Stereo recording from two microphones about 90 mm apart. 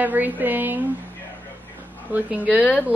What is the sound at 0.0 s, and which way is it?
Speech, 20° right (ahead or behind).